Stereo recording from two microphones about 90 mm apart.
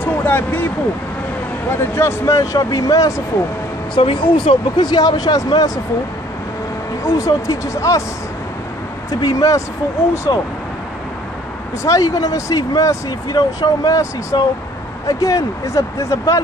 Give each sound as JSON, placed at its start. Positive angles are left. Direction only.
{"t": 0.0, "sound": "a sound", "side_deg": 20}
{"t": 1.7, "sound": "speech", "side_deg": 30}
{"t": 3.9, "sound": "speech", "side_deg": 75}
{"t": 7.0, "sound": "speech", "side_deg": 40}
{"t": 9.2, "sound": "speech", "side_deg": 40}
{"t": 11.8, "sound": "speech", "side_deg": 40}